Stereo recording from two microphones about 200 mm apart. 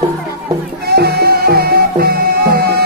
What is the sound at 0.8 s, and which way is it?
Music, 55° right (ahead or behind).